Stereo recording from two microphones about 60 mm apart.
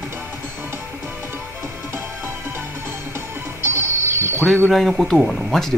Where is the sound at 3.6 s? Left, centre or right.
Right.